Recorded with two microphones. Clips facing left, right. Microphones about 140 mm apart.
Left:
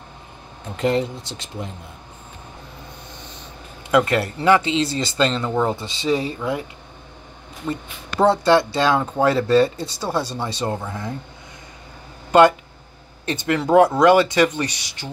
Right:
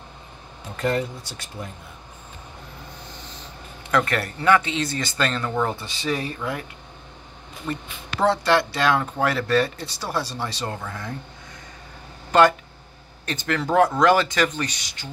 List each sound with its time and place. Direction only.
0.7 s speech: 20° left (ahead or behind)
3.9 s speech: 20° left (ahead or behind)
7.7 s speech: 15° left (ahead or behind)
12.3 s speech: 15° left (ahead or behind)